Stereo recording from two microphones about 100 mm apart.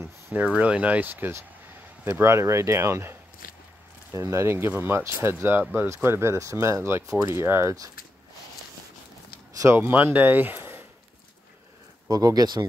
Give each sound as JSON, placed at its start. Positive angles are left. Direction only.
{"t": 0.0, "sound": "speech", "side_deg": -15}
{"t": 9.8, "sound": "speech", "side_deg": -20}
{"t": 12.1, "sound": "speech", "side_deg": -35}